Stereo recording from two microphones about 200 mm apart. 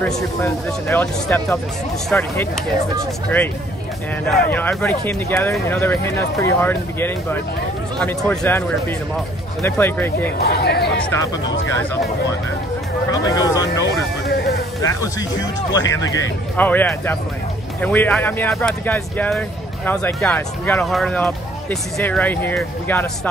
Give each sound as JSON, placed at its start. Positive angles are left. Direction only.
{"t": 0.0, "sound": "speech", "side_deg": 10}
{"t": 4.3, "sound": "speech", "side_deg": 10}
{"t": 10.4, "sound": "speech", "side_deg": 55}
{"t": 13.1, "sound": "speech", "side_deg": 20}
{"t": 13.7, "sound": "music", "side_deg": 55}
{"t": 14.8, "sound": "speech", "side_deg": 15}